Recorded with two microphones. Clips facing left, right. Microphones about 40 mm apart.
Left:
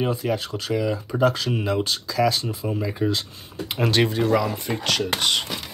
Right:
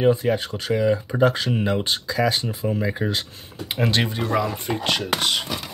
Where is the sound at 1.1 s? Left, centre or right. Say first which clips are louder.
Right 1 dB; right.